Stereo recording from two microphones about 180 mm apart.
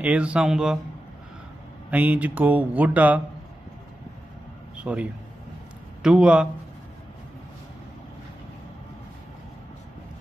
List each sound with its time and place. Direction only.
0.0 s speech: 5° right (ahead or behind)
1.9 s speech: 10° right (ahead or behind)
4.7 s speech: 5° right (ahead or behind)